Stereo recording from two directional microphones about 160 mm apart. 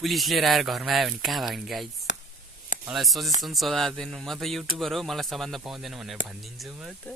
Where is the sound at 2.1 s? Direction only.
90° left.